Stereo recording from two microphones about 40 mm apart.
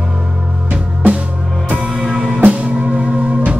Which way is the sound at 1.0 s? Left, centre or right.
Right.